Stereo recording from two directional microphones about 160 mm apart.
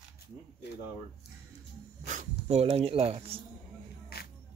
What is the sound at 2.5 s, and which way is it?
Speech, 40° right (ahead or behind).